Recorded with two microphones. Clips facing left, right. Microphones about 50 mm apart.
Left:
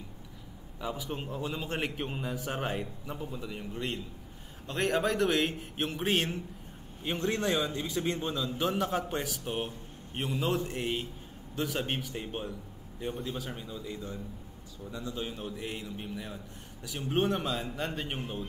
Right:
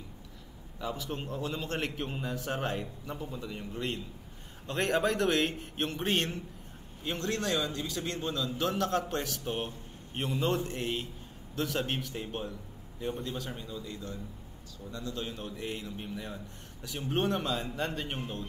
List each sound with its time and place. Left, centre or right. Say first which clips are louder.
0.7 s a man's voice: even; centre
7.0 s a man's voice: left 2 dB; centre